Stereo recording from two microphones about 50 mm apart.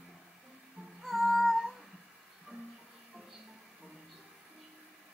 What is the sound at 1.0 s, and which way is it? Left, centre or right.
Female singing, centre.